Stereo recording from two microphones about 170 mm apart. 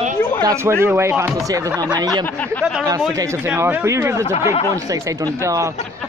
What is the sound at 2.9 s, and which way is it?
Speech, 15° right (ahead or behind).